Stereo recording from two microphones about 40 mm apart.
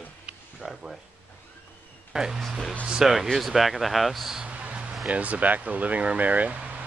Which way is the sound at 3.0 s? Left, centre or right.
Centre.